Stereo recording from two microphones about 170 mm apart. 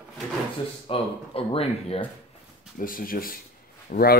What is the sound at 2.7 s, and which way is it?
Speech, 55° left (ahead or behind).